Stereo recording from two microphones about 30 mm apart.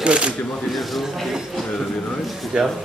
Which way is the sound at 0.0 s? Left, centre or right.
Right.